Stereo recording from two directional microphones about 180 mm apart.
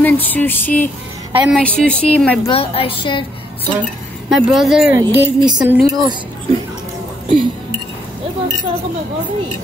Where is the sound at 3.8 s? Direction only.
Centre (ahead or behind).